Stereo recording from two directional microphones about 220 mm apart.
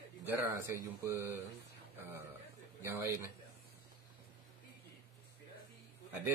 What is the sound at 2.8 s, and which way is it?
Speech, 10° right (ahead or behind).